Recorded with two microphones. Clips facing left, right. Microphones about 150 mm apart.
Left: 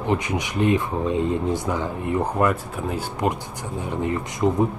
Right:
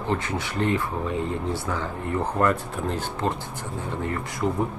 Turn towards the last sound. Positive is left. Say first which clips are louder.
# left 5 dB
turn(degrees=20)  # may be behind; listen again after turning